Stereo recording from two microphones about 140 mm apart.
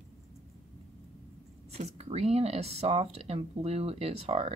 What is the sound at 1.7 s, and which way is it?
A woman's voice, 50° right (ahead or behind).